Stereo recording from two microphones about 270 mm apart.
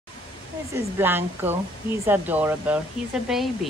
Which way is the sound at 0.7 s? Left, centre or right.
Centre.